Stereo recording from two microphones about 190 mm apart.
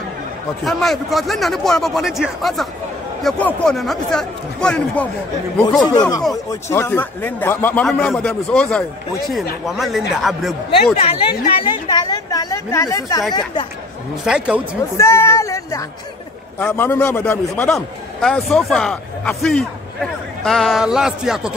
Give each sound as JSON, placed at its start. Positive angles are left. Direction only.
{"t": 0.7, "sound": "a man's voice", "side_deg": 0}
{"t": 5.9, "sound": "a woman's voice", "side_deg": 20}
{"t": 11.0, "sound": "a woman's voice", "side_deg": 30}
{"t": 14.2, "sound": "a man's voice", "side_deg": -5}
{"t": 15.0, "sound": "a man's voice", "side_deg": 15}